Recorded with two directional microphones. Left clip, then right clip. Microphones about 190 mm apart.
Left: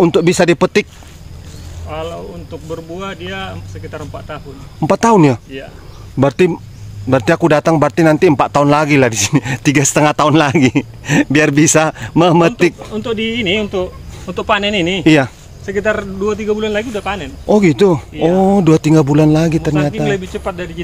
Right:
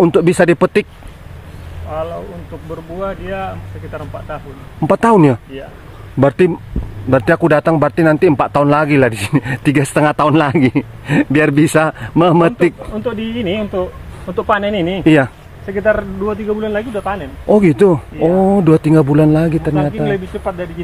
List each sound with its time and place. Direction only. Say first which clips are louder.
0.0 s speech: even; 10° left (ahead or behind)
1.9 s speech: right 2 dB; 25° right (ahead or behind)
4.7 s speech: even; 10° left (ahead or behind)
12.9 s speech: left 3 dB; 20° right (ahead or behind)
15.0 s speech: even; 10° left (ahead or behind)
15.6 s speech: right 2 dB; 30° right (ahead or behind)
17.5 s speech: right 1 dB; 5° left (ahead or behind)
19.7 s speech: left 1 dB; 30° right (ahead or behind)